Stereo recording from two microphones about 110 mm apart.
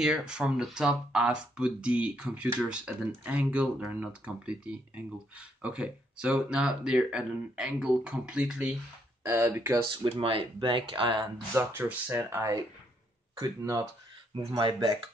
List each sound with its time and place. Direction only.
0.0 s speech: 5° right (ahead or behind)
9.2 s speech: 25° right (ahead or behind)
10.0 s speech: 55° right (ahead or behind)
11.5 s speech: 15° right (ahead or behind)
12.4 s speech: 30° right (ahead or behind)
14.3 s speech: 45° right (ahead or behind)